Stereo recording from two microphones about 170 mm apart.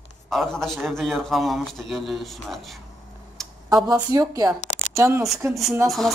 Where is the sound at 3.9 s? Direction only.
20° right (ahead or behind).